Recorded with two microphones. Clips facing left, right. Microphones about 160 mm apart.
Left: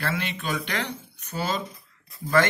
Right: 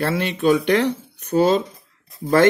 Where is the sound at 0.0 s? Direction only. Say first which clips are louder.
Right 10 dB; 50° right (ahead or behind).